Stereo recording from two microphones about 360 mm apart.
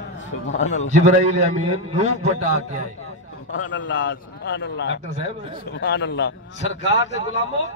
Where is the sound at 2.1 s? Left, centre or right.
Left.